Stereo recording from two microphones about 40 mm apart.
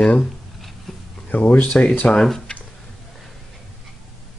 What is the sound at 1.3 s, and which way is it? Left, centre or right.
Speech, left.